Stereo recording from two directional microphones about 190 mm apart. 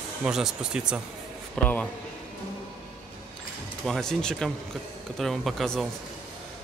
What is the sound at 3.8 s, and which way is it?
Speech, centre (ahead or behind).